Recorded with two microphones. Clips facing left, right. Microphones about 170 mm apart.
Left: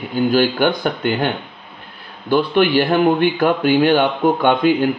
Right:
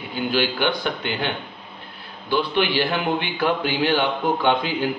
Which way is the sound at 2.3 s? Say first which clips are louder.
Left 7 dB; 50° left (ahead or behind).